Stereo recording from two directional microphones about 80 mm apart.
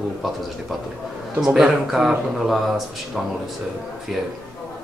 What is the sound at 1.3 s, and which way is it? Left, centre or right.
A man's voice, centre.